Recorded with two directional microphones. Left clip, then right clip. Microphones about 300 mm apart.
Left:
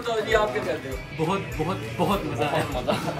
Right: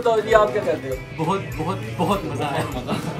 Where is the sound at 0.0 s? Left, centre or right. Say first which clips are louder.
Right 7 dB; centre.